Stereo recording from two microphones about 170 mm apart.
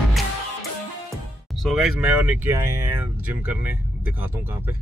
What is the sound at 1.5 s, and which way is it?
Speech, centre (ahead or behind).